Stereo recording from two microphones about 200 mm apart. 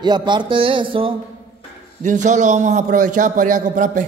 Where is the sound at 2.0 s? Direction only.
35° right (ahead or behind).